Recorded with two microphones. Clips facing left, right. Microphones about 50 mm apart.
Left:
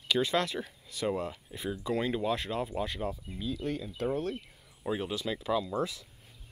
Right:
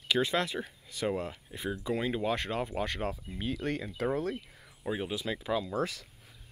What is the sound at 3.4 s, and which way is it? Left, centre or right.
Speech, right.